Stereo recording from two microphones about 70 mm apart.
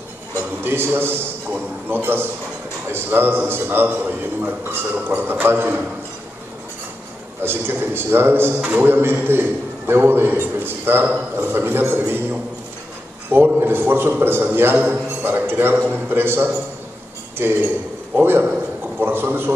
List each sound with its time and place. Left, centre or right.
0.7 s a man's voice: right
7.4 s a man's voice: right
13.6 s a man's voice: right